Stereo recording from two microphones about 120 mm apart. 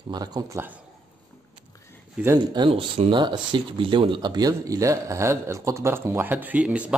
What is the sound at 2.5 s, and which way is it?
Speech, 45° right (ahead or behind).